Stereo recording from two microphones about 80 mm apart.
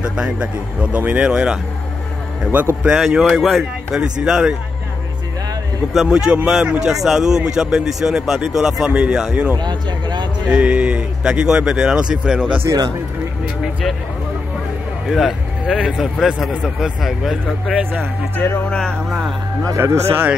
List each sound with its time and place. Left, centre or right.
0.0 s a man's voice: centre
3.0 s speech: centre
5.9 s speech: centre
9.6 s speech: right
10.5 s speech: centre
15.0 s speech: centre
18.3 s speech: left
18.7 s speech: centre
19.0 s speech: centre
19.8 s speech: right